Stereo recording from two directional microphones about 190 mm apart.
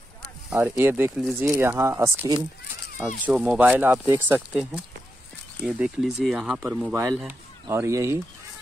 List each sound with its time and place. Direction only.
0.5 s speech: 10° right (ahead or behind)